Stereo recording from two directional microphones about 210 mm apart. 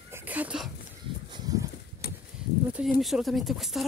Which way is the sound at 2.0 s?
50° left (ahead or behind).